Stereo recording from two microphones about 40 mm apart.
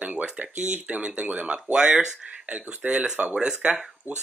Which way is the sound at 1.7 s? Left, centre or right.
Right.